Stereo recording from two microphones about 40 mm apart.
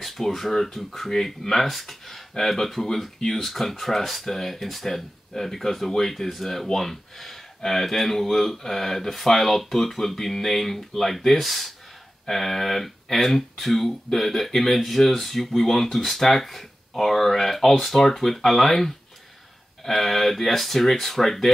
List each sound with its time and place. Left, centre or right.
0.0 s speech: centre